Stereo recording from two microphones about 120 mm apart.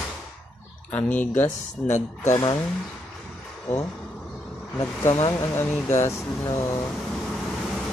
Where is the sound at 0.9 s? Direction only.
10° left (ahead or behind).